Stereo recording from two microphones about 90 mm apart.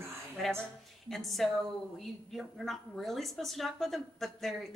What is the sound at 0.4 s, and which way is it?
Speech, 5° left (ahead or behind).